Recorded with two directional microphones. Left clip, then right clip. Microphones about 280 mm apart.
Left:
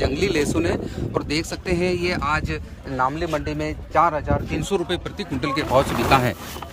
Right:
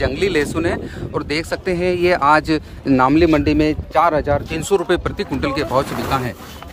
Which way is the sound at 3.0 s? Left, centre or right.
Right.